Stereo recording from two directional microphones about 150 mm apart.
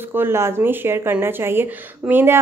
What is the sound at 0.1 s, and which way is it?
Speech, 15° right (ahead or behind).